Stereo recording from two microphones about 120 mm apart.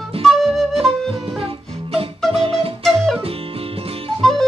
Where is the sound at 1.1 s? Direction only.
50° right (ahead or behind).